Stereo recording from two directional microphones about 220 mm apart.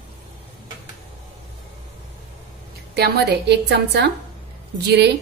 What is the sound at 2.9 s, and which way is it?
A woman's voice, 50° right (ahead or behind).